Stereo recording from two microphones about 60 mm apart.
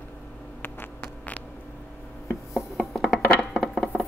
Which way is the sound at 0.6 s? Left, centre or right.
Left.